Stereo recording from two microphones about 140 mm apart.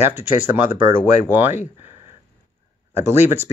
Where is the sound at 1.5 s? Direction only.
55° left (ahead or behind).